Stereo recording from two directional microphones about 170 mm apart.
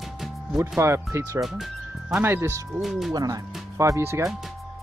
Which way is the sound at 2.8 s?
Centre (ahead or behind).